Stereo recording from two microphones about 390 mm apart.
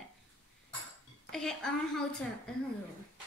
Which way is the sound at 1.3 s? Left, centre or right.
Centre.